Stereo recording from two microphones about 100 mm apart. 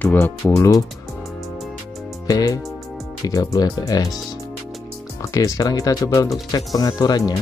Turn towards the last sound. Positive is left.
turn(degrees=40)  # may be behind; listen again after turning